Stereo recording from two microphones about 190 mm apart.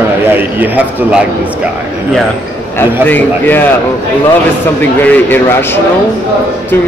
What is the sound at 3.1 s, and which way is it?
Speech, 10° left (ahead or behind).